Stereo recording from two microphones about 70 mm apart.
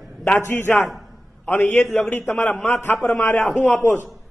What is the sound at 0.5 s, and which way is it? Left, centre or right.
A man's voice, left.